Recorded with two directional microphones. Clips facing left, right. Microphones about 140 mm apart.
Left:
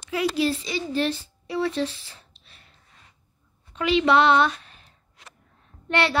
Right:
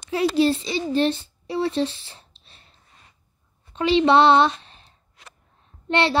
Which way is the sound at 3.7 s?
30° right (ahead or behind).